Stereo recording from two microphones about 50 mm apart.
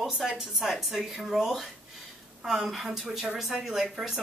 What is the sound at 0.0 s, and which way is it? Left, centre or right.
A woman's voice, centre.